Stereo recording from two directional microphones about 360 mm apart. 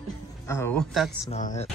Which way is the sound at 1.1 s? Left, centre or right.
Centre.